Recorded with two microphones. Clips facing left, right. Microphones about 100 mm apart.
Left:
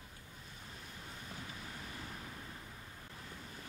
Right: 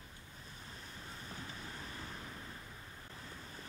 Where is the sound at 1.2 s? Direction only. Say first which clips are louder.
Right 1 dB; 35° right (ahead or behind).